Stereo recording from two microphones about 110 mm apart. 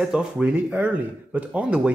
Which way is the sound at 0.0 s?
5° right (ahead or behind).